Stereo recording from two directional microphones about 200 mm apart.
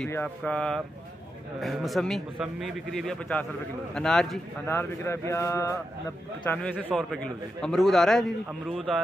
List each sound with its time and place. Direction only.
0.0 s a man's voice: 5° left (ahead or behind)